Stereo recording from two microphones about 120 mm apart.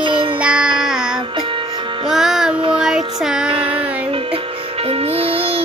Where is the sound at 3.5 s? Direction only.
50° right (ahead or behind).